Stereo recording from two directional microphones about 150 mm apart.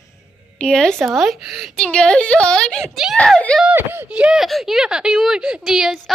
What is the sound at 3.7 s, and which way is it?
Speech, 15° right (ahead or behind).